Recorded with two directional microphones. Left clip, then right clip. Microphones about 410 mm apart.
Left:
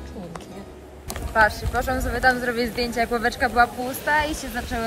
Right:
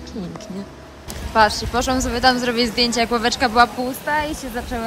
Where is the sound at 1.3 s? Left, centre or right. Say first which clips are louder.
Right 3 dB; centre.